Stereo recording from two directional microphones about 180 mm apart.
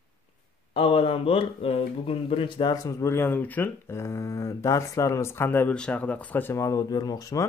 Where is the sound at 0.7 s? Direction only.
30° left (ahead or behind).